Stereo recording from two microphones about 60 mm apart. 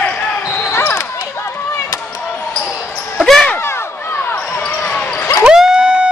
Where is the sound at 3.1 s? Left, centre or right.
Centre.